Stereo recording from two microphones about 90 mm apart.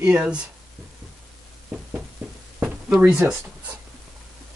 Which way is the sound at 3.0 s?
30° right (ahead or behind).